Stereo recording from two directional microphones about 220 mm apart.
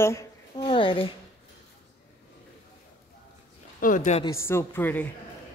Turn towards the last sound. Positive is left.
turn(degrees=10)  # may be behind; listen again after turning